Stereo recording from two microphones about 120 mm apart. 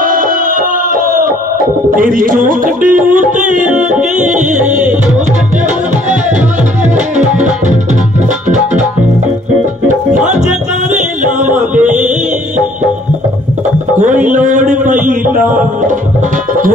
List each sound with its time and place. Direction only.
2.3 s music: 90° right
7.2 s music: 85° right
10.1 s music: 85° right
14.0 s music: 90° right